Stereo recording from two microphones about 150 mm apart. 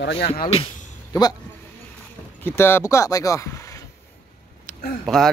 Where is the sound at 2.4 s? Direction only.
15° left (ahead or behind).